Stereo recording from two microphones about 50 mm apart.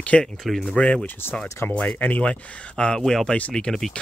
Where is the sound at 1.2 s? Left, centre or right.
Left.